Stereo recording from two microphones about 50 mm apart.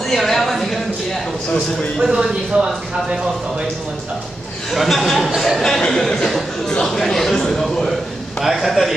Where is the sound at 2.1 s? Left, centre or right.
Centre.